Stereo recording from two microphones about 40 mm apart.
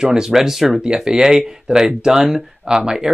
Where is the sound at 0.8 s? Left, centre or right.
Centre.